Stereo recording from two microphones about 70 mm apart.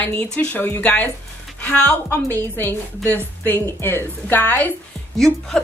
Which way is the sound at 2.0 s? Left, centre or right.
Left.